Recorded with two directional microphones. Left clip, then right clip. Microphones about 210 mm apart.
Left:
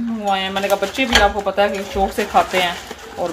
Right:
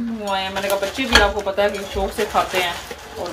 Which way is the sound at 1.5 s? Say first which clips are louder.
Left 2 dB; 45° left (ahead or behind).